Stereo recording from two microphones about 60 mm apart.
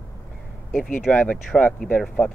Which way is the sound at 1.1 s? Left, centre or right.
Centre.